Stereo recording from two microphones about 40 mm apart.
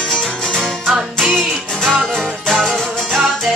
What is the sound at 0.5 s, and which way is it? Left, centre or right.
Music, centre.